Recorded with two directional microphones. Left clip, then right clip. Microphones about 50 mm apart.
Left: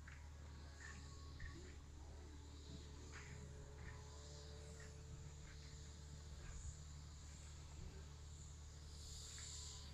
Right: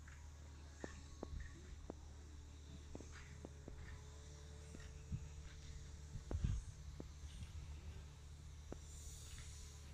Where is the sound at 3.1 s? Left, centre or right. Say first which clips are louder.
Left 2 dB; right.